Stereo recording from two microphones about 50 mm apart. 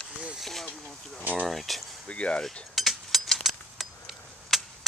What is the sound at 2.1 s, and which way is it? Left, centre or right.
Speech, left.